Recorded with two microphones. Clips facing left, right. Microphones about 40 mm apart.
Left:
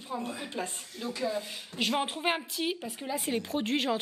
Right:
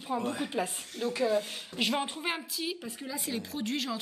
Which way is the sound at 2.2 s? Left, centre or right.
Left.